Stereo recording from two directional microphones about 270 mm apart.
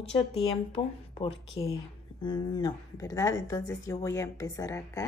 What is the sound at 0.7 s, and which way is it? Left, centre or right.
Speech, centre.